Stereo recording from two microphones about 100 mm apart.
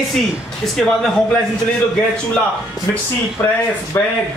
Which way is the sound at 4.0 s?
25° left (ahead or behind).